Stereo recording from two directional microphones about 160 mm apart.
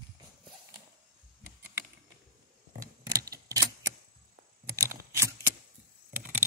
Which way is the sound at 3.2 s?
20° right (ahead or behind).